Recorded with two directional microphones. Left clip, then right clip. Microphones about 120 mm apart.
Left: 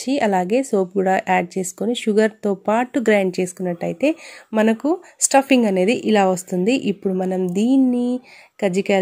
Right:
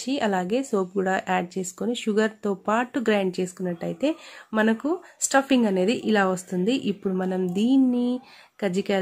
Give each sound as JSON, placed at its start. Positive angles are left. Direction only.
{"t": 0.0, "sound": "a woman's voice", "side_deg": 45}